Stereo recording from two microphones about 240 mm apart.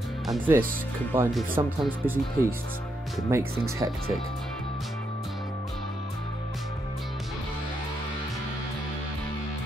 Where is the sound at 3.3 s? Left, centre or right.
Centre.